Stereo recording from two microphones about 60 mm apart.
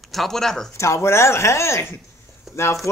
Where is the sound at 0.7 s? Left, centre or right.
Left.